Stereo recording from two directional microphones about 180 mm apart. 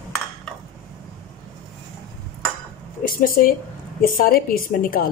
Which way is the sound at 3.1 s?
55° left (ahead or behind).